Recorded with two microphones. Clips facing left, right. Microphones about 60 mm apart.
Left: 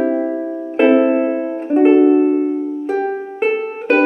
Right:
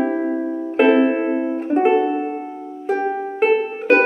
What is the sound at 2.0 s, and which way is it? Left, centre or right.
Music, centre.